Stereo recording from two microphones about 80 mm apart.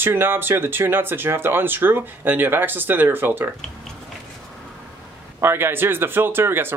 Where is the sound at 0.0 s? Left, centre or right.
Right.